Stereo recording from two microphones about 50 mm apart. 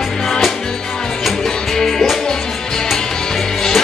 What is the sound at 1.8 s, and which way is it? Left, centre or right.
Music, centre.